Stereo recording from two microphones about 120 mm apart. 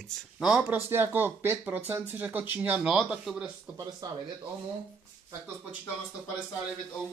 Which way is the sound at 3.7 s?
30° right (ahead or behind).